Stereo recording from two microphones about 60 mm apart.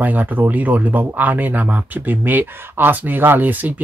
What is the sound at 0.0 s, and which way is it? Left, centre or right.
Speech, right.